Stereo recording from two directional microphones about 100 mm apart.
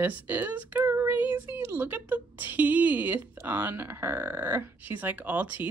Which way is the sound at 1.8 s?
20° right (ahead or behind).